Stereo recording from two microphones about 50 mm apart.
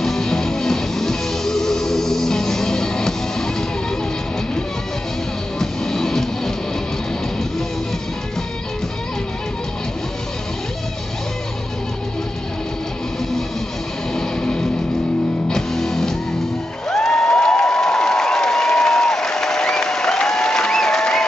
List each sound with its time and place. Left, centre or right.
0.0 s music: centre
5.6 s music: centre
14.1 s music: centre
16.9 s a sound: centre